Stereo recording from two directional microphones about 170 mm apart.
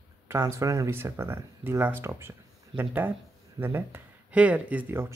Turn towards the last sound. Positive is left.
turn(degrees=-10)  # may be behind; listen again after turning